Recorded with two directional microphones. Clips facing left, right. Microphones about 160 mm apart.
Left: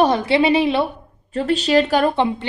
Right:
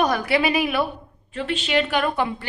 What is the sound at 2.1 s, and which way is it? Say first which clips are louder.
Speech: left 5 dB; 25° left (ahead or behind).